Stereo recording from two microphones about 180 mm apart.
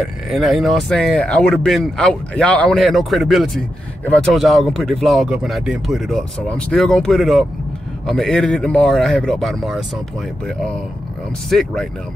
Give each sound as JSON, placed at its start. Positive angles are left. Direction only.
{"t": 0.0, "sound": "speech", "side_deg": 0}
{"t": 11.5, "sound": "speech", "side_deg": 5}